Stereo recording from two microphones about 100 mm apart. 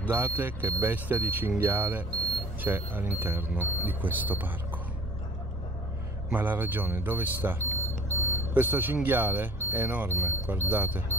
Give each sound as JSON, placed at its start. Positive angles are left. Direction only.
{"t": 0.0, "sound": "speech", "side_deg": -20}
{"t": 6.3, "sound": "speech", "side_deg": -20}
{"t": 8.2, "sound": "smoke detector", "side_deg": -20}
{"t": 9.0, "sound": "speech", "side_deg": -20}